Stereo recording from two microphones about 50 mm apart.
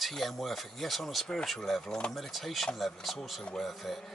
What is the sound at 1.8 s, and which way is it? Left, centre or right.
Speech, centre.